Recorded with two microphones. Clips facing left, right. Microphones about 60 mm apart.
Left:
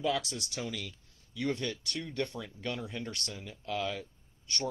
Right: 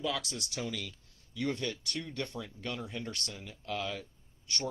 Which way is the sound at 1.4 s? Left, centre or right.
Left.